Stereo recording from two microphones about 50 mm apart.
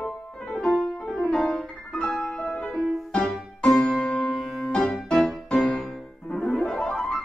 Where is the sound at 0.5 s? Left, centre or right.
Centre.